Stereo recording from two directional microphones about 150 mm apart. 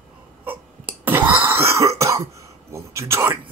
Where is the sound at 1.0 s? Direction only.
10° right (ahead or behind).